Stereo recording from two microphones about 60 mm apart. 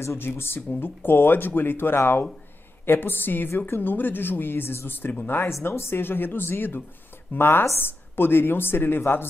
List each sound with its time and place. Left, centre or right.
0.2 s a woman's voice: left